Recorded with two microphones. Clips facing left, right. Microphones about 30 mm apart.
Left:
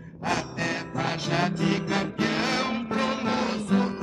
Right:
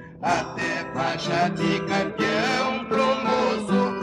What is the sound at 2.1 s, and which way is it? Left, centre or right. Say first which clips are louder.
Music: right 3 dB; right.